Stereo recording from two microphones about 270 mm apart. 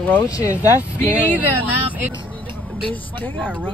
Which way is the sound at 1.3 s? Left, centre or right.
Centre.